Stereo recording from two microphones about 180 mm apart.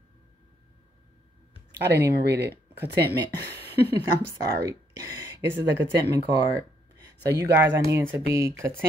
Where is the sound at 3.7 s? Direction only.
65° right (ahead or behind).